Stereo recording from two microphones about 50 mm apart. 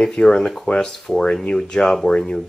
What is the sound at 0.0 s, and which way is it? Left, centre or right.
Speech, centre.